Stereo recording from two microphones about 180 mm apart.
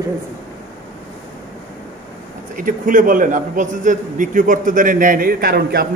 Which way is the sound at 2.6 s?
50° right (ahead or behind).